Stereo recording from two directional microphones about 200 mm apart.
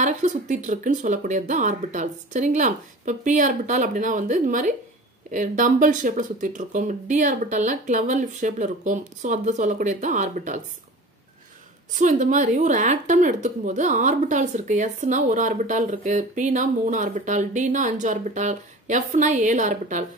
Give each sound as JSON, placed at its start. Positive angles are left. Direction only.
{"t": 0.0, "sound": "a woman's voice", "side_deg": -35}
{"t": 11.9, "sound": "a woman's voice", "side_deg": -40}